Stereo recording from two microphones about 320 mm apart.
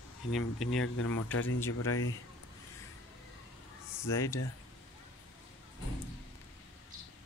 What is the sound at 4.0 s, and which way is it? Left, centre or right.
Speech, centre.